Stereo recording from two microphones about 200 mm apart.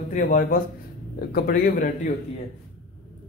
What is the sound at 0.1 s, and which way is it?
Speech, 45° left (ahead or behind).